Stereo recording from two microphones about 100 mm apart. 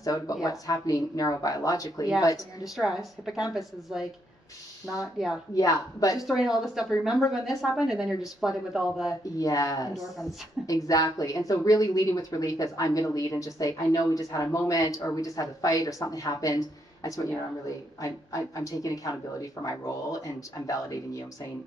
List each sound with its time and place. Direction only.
0.0 s speech: 35° left (ahead or behind)
2.6 s speech: 5° right (ahead or behind)
5.5 s speech: 35° left (ahead or behind)
6.1 s speech: 5° right (ahead or behind)
9.4 s speech: 35° left (ahead or behind)
9.9 s speech: centre (ahead or behind)
10.7 s speech: 35° left (ahead or behind)